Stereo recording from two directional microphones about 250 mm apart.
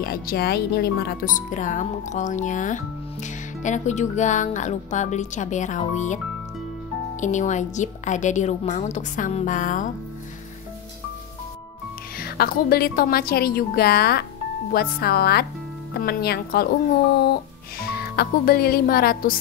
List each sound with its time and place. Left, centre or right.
0.0 s a woman's voice: left
7.2 s a woman's voice: left
12.2 s speech: left